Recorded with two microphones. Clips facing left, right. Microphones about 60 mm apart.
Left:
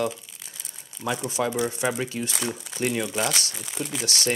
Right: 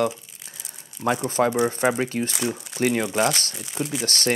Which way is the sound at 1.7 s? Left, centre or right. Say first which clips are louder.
Right 5 dB; right.